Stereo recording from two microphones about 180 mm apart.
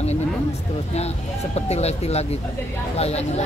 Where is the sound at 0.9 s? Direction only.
35° left (ahead or behind).